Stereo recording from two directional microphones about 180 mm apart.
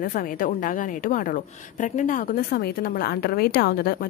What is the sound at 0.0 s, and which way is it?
A woman's voice, 50° left (ahead or behind).